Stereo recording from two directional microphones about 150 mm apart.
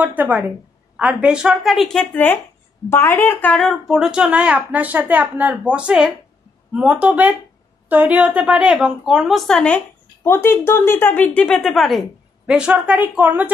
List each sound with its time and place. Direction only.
0.0 s a woman's voice: 10° right (ahead or behind)
10.2 s a woman's voice: 15° left (ahead or behind); by 13.5 s 10° right (ahead or behind)